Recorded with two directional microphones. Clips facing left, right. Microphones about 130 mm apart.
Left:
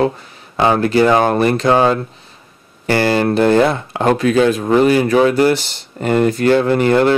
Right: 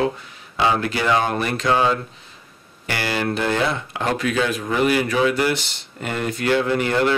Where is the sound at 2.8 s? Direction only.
35° left (ahead or behind).